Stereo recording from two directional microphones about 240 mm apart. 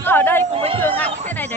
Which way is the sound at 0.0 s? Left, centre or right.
Centre.